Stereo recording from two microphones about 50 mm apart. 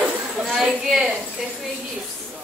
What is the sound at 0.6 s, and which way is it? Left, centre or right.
Speech, centre.